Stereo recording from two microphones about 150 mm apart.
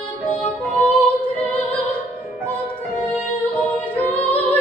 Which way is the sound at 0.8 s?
35° left (ahead or behind).